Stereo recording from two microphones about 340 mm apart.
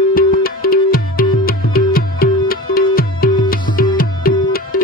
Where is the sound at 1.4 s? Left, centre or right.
Left.